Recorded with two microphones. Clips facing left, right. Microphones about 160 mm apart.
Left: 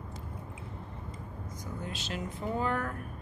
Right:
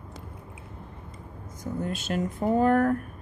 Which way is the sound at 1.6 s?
50° right (ahead or behind).